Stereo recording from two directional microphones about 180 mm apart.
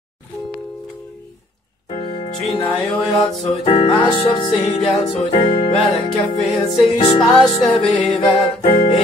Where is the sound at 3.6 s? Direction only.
30° left (ahead or behind).